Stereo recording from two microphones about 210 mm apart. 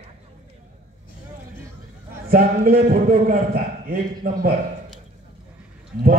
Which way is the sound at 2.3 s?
40° right (ahead or behind).